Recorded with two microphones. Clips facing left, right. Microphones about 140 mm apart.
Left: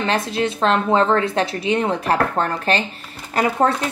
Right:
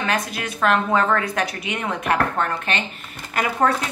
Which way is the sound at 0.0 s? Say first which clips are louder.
Left 4 dB; 30° left (ahead or behind).